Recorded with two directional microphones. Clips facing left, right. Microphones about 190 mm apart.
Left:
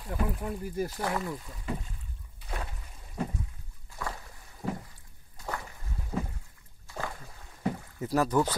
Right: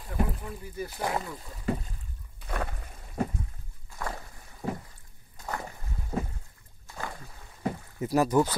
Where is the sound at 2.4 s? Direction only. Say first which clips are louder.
Right 5 dB; 55° right (ahead or behind).